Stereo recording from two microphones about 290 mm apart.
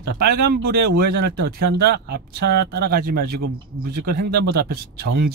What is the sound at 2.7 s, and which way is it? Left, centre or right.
Speech, right.